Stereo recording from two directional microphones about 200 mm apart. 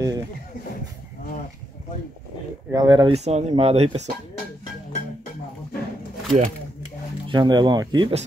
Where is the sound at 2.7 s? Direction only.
20° right (ahead or behind).